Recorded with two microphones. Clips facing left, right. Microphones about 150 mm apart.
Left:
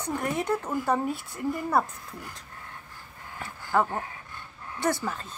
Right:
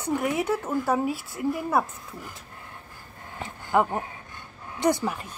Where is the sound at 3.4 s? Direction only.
20° right (ahead or behind).